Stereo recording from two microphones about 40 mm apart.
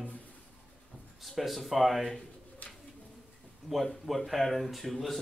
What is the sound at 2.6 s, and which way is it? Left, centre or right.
Bird, left.